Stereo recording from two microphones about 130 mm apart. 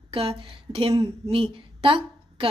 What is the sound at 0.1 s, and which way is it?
A woman's voice, 45° right (ahead or behind).